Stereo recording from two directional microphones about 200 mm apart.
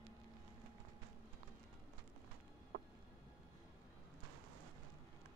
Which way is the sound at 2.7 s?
60° right (ahead or behind).